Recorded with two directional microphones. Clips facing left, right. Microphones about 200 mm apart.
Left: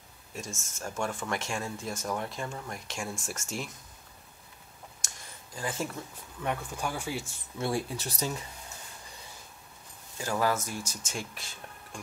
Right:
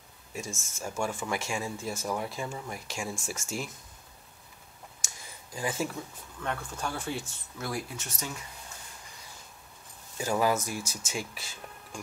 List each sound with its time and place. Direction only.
0.3 s speech: 5° right (ahead or behind)
5.0 s a sound: 10° right (ahead or behind)
6.4 s speech: 15° left (ahead or behind)
7.5 s speech: 30° left (ahead or behind)
10.1 s speech: 15° right (ahead or behind)